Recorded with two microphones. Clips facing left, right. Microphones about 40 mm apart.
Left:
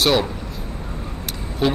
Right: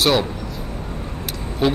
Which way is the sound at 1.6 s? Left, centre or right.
Centre.